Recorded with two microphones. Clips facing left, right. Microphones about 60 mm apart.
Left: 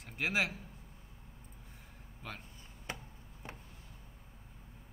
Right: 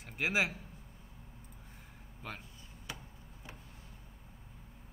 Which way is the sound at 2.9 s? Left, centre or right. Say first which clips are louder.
Left 3 dB; left.